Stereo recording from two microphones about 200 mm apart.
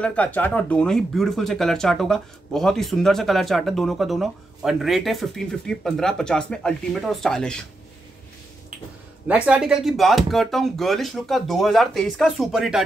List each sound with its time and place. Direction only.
0.0 s speech: 5° left (ahead or behind)
9.3 s speech: 5° right (ahead or behind)